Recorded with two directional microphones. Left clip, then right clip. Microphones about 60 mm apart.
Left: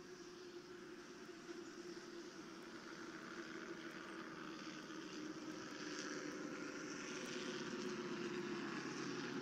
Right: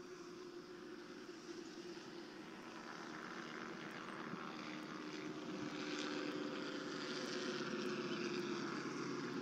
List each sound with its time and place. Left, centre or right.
7.2 s vehicle: right
8.2 s vehicle: right